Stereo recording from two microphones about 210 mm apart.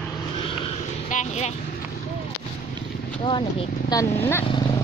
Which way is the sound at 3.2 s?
25° left (ahead or behind).